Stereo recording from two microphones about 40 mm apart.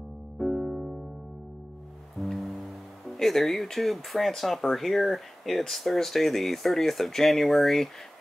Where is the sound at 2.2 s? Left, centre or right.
Centre.